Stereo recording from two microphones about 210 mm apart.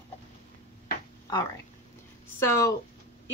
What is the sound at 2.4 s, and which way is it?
Speech, 15° left (ahead or behind).